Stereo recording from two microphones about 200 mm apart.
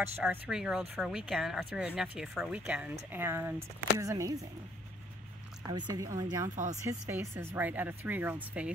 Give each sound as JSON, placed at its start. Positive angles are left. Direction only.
{"t": 0.2, "sound": "speech", "side_deg": -5}
{"t": 5.7, "sound": "a woman's voice", "side_deg": -20}
{"t": 6.5, "sound": "speech", "side_deg": -40}
{"t": 6.8, "sound": "speech", "side_deg": -15}